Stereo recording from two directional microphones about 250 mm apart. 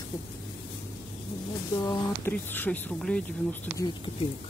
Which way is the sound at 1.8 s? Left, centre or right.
Centre.